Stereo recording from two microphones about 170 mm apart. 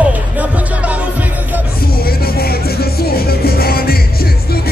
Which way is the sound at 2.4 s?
65° left (ahead or behind).